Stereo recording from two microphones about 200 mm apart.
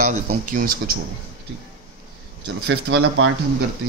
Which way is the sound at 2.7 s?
65° right (ahead or behind).